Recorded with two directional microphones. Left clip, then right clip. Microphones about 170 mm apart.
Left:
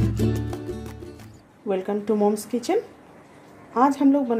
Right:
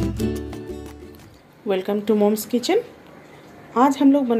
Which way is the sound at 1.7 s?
Centre (ahead or behind).